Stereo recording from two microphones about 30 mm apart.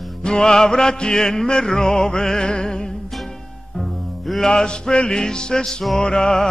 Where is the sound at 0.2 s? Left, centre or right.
Left.